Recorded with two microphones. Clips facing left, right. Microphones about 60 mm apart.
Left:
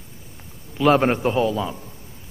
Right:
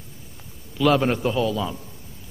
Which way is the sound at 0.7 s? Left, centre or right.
Left.